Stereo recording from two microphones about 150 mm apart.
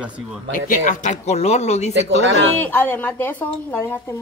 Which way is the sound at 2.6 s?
10° left (ahead or behind).